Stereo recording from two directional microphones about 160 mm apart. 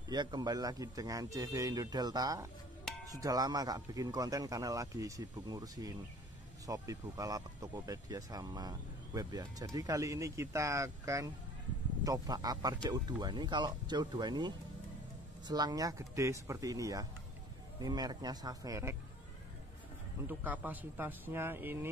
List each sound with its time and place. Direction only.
0.1 s speech: 25° right (ahead or behind)
20.2 s speech: 10° right (ahead or behind)